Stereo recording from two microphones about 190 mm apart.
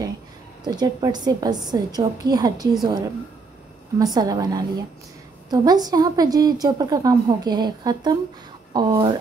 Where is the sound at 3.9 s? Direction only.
20° right (ahead or behind).